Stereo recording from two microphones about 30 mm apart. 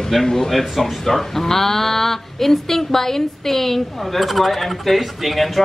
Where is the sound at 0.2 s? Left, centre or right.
Centre.